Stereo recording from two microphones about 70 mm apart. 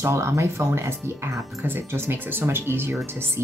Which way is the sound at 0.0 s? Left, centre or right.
Right.